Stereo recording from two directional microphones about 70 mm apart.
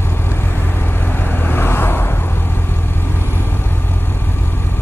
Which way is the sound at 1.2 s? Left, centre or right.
Left.